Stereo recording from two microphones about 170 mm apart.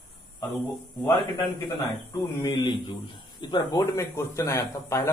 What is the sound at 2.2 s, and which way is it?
A man's voice, 25° left (ahead or behind).